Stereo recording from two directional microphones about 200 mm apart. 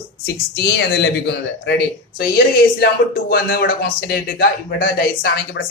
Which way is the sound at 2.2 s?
50° left (ahead or behind).